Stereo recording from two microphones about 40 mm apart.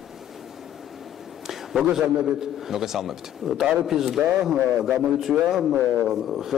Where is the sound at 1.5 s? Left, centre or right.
Centre.